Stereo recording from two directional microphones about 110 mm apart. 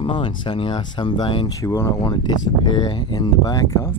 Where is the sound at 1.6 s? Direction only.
30° left (ahead or behind).